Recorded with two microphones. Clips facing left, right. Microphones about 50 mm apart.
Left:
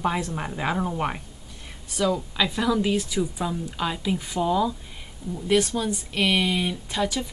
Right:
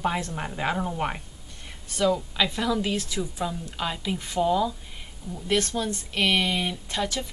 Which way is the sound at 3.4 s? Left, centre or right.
Centre.